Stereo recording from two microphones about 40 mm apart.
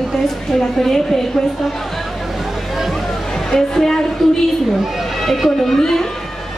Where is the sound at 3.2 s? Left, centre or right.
Centre.